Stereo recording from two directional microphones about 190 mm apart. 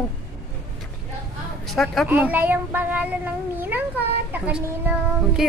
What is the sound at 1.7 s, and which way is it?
Speech, centre (ahead or behind).